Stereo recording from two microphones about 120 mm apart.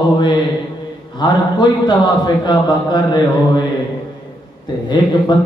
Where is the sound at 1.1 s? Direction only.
35° left (ahead or behind).